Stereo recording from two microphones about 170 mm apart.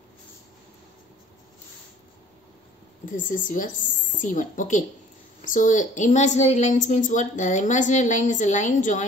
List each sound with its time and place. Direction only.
3.1 s a woman's voice: 50° left (ahead or behind)